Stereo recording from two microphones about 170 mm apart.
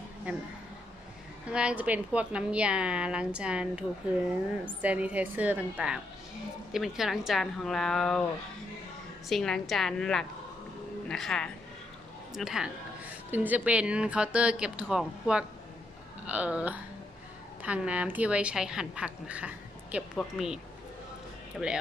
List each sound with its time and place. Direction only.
0.3 s a woman's voice: 10° right (ahead or behind)
1.5 s a woman's voice: 5° right (ahead or behind)
4.8 s a woman's voice: 10° right (ahead or behind)
9.3 s a woman's voice: centre (ahead or behind)